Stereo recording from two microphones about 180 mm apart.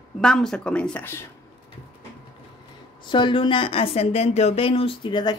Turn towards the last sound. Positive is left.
turn(degrees=25)  # may be behind; listen again after turning